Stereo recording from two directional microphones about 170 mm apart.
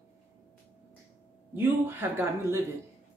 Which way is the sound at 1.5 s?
15° right (ahead or behind).